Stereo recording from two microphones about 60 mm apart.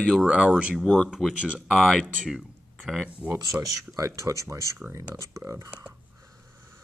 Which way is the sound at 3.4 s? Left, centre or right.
Right.